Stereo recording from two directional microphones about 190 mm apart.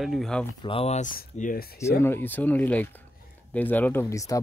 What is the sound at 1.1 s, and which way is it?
Speech, 50° left (ahead or behind).